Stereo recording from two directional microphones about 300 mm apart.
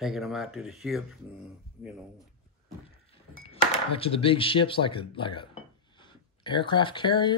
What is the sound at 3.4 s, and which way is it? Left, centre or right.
Speech, centre.